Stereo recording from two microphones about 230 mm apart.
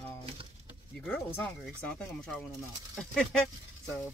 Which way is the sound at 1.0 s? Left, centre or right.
Centre.